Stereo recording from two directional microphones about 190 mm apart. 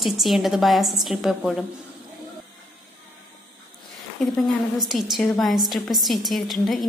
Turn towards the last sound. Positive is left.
turn(degrees=0)  # may be behind; listen again after turning